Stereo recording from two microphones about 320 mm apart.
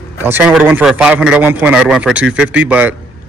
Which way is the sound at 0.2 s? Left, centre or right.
Centre.